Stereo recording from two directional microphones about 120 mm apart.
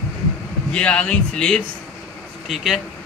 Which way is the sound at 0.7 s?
10° left (ahead or behind).